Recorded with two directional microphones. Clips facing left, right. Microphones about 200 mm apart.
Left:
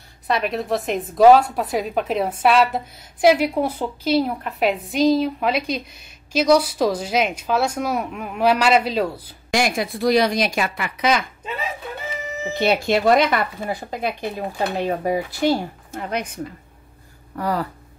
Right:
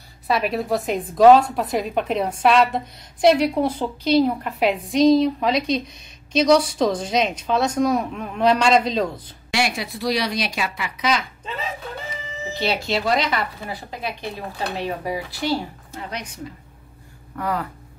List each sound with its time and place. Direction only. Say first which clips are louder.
0.3 s a woman's voice: even; centre (ahead or behind)
9.5 s a woman's voice: left 3 dB; 45° left (ahead or behind)
12.5 s a woman's voice: left 5 dB; 50° left (ahead or behind)
17.4 s speech: left 2 dB; 35° left (ahead or behind)